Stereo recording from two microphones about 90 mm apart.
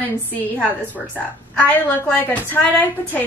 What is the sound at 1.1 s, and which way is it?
A woman's voice, 15° left (ahead or behind).